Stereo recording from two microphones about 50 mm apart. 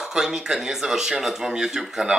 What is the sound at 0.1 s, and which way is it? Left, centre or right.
A woman's voice, centre.